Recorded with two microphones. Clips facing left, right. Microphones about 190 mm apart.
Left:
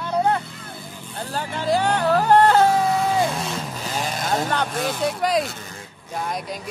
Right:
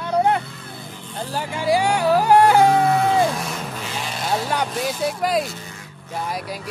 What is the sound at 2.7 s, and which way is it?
Music, 60° right (ahead or behind).